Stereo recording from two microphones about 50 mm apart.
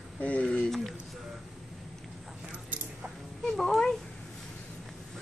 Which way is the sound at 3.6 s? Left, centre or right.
Centre.